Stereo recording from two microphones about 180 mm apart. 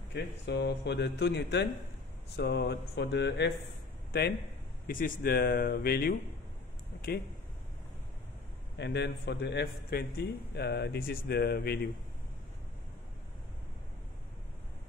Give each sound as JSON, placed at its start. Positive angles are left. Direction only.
{"t": 0.1, "sound": "a man's voice", "side_deg": 70}
{"t": 4.1, "sound": "a man's voice", "side_deg": 60}
{"t": 8.7, "sound": "a man's voice", "side_deg": 75}